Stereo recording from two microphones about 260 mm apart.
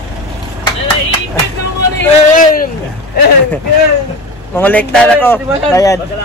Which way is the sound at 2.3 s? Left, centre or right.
Left.